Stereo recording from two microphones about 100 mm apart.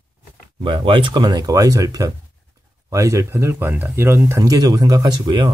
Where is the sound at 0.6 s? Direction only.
55° right (ahead or behind); by 4.4 s 25° right (ahead or behind).